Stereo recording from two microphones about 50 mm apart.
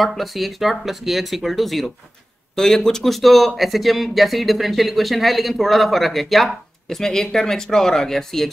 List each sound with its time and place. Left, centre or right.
0.0 s speech: centre